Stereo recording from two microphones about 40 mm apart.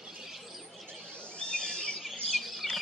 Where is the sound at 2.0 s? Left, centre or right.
Centre.